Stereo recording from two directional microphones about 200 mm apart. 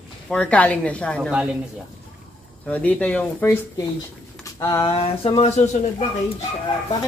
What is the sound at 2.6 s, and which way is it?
A woman's voice, 5° left (ahead or behind).